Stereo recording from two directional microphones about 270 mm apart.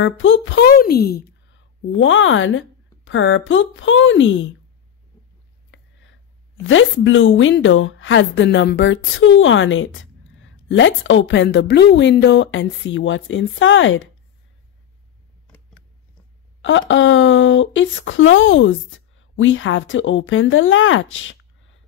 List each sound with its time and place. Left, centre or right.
0.0 s a woman's voice: left
5.7 s a sound: left
6.7 s a woman's voice: left
16.6 s a woman's voice: left